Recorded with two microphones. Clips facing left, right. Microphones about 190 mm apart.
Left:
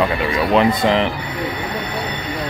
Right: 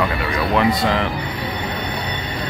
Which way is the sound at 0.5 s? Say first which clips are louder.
Left 3 dB; 20° left (ahead or behind).